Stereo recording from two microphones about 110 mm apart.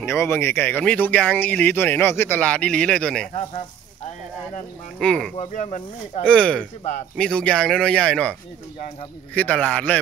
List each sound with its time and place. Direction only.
0.0 s speech: 25° left (ahead or behind); by 3.3 s 5° left (ahead or behind)
4.9 s speech: 5° left (ahead or behind)